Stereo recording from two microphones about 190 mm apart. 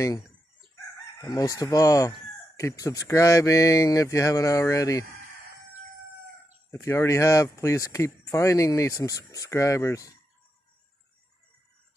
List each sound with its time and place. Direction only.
1.2 s speech: 15° left (ahead or behind)
6.7 s speech: 15° left (ahead or behind)